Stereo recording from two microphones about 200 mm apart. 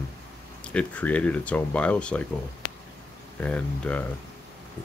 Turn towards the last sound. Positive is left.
turn(degrees=5)  # may be behind; listen again after turning